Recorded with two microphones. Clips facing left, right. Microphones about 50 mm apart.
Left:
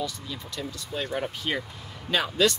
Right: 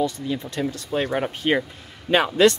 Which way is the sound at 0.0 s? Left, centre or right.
Right.